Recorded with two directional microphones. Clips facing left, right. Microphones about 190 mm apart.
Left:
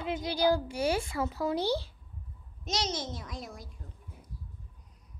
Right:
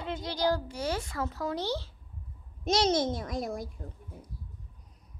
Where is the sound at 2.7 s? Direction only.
55° right (ahead or behind).